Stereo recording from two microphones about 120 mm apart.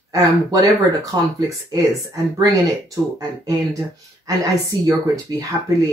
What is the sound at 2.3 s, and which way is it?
Speech, 30° right (ahead or behind).